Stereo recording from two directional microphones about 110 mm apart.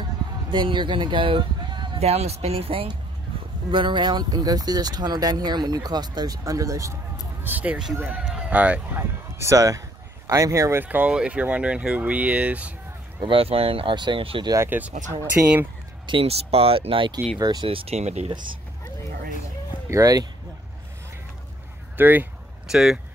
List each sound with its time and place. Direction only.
0.5 s speech: 45° right (ahead or behind)
2.0 s speech: 70° right (ahead or behind)
3.7 s speech: 45° right (ahead or behind); by 7.0 s 30° right (ahead or behind)
7.4 s speech: 15° right (ahead or behind)
9.4 s speech: 30° right (ahead or behind); by 12.7 s 10° right (ahead or behind)
13.2 s speech: 55° right (ahead or behind)
14.7 s speech: 15° right (ahead or behind)
16.1 s speech: 60° right (ahead or behind)
17.4 s speech: 35° right (ahead or behind)
17.6 s speech: 60° right (ahead or behind); by 18.3 s 80° right
19.9 s speech: 35° right (ahead or behind)
21.9 s speech: 20° right (ahead or behind)
22.7 s speech: 5° right (ahead or behind)